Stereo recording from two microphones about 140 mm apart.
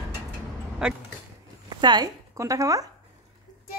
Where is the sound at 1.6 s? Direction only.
30° right (ahead or behind).